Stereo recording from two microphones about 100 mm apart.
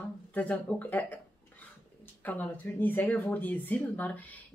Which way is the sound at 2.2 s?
15° left (ahead or behind).